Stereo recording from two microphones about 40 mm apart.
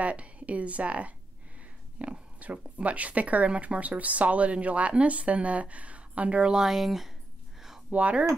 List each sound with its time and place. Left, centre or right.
0.0 s a woman's voice: right
6.5 s speech: centre
7.9 s speech: right